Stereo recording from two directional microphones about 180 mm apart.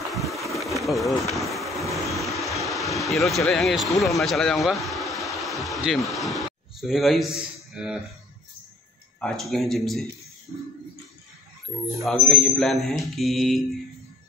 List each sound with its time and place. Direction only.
0.1 s a sound: centre (ahead or behind)
1.3 s vehicle: centre (ahead or behind)
4.2 s speech: centre (ahead or behind)
9.2 s speech: centre (ahead or behind)
12.0 s speech: centre (ahead or behind)